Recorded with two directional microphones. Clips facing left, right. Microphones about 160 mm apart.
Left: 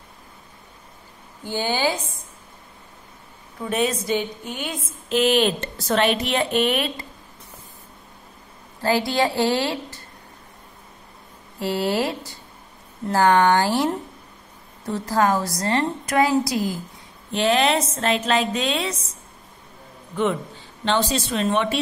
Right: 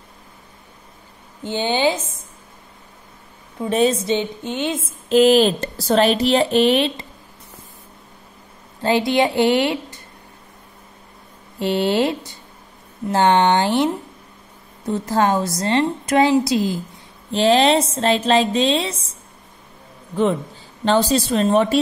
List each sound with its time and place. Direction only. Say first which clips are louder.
1.4 s a woman's voice: right 4 dB; 20° right (ahead or behind)
3.6 s a woman's voice: right 5 dB; 30° right (ahead or behind)
8.8 s a woman's voice: right 3 dB; 20° right (ahead or behind)
11.6 s a woman's voice: right 4 dB; 25° right (ahead or behind)
14.9 s a woman's voice: right 2 dB; 20° right (ahead or behind)
20.8 s a woman's voice: right 5 dB; 40° right (ahead or behind)